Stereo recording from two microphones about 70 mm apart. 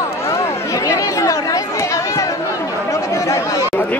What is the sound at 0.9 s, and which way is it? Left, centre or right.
Chatter, left.